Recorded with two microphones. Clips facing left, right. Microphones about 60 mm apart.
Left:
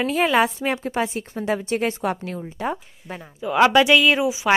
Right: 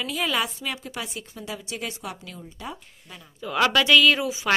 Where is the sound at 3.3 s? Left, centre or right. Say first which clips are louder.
Left 6 dB; centre.